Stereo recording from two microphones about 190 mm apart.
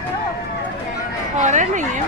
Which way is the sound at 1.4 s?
40° right (ahead or behind).